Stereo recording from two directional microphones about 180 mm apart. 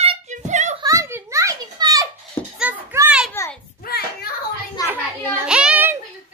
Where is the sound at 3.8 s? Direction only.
60° left (ahead or behind).